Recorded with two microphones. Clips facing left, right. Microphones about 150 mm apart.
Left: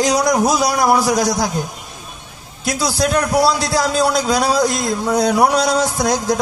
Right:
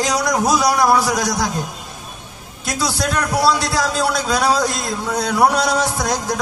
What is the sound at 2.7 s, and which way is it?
A man's voice, 25° left (ahead or behind).